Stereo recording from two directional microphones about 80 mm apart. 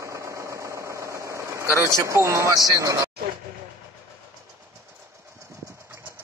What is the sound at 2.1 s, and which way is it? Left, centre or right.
Speech, right.